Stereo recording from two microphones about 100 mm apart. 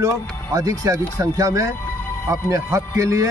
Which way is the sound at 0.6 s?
35° right (ahead or behind).